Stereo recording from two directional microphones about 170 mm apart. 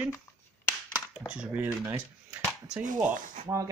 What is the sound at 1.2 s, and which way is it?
Speech, 5° right (ahead or behind).